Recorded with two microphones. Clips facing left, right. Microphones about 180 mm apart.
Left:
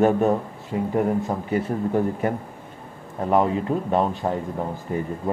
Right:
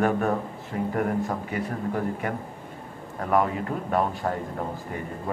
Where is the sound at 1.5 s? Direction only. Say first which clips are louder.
Left 6 dB; 30° left (ahead or behind).